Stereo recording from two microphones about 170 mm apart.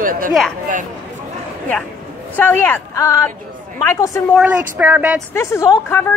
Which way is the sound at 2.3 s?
10° left (ahead or behind).